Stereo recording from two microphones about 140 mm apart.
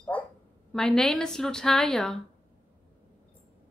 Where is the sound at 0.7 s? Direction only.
5° left (ahead or behind).